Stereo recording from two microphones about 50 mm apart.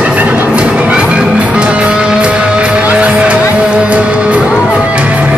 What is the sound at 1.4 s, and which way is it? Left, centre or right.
Music, right.